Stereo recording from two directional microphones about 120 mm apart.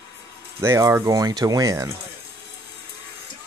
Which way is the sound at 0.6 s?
25° right (ahead or behind).